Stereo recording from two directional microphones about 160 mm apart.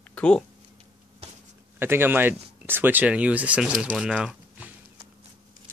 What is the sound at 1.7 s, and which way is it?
Speech, 15° right (ahead or behind).